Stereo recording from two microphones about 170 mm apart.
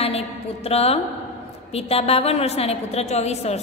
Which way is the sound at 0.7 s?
35° left (ahead or behind).